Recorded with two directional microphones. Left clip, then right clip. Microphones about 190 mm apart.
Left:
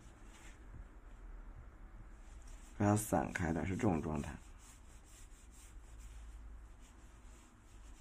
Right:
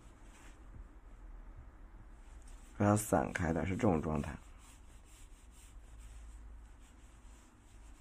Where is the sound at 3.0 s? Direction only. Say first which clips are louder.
Right 3 dB; 20° right (ahead or behind).